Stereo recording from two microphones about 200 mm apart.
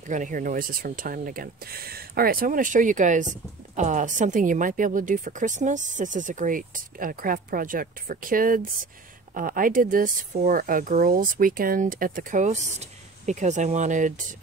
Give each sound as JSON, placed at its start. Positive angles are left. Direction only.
{"t": 0.0, "sound": "a woman's voice", "side_deg": -40}